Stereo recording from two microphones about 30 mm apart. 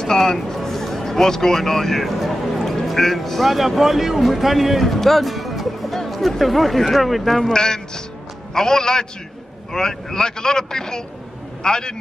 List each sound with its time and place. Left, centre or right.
0.0 s speech: centre
0.6 s a sound: centre
2.6 s speech: centre
7.5 s a man's voice: left